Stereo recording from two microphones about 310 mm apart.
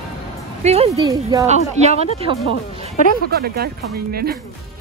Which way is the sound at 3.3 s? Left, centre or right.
Right.